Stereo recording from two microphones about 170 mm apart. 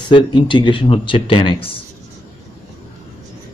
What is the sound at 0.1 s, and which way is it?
Speech, 30° left (ahead or behind).